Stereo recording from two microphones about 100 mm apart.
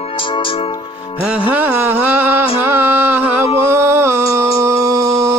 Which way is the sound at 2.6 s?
20° right (ahead or behind).